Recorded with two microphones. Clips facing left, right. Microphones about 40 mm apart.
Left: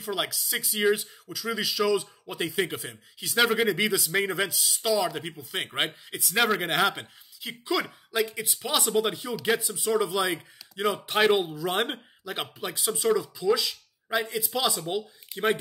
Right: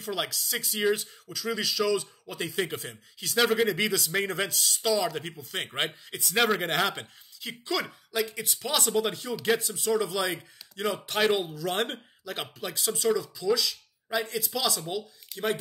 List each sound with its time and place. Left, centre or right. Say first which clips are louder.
0.0 s speech: left 1 dB; centre; by 15.5 s left